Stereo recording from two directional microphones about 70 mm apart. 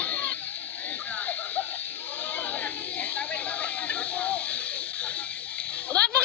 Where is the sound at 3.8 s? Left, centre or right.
Left.